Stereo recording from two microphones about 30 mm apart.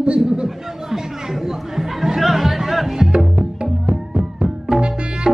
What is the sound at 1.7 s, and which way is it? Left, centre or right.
Music, centre.